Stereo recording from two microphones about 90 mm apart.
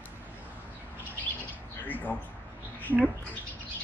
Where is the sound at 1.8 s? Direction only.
20° left (ahead or behind).